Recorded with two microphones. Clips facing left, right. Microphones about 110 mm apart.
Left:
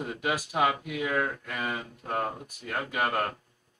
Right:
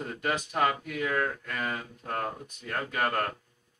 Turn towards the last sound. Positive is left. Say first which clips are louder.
# left 1 dB
turn(degrees=10)  # may be behind; listen again after turning